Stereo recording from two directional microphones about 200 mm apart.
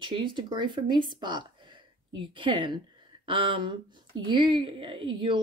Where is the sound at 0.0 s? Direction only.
25° right (ahead or behind).